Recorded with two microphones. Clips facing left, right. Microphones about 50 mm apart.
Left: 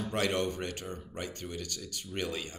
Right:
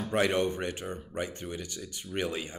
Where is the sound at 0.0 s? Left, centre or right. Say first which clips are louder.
Right 4 dB; right.